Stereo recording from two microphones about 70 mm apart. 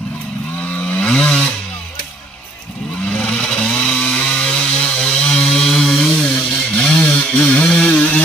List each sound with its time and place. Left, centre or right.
0.6 s chainsaw: centre
3.1 s chainsaw: centre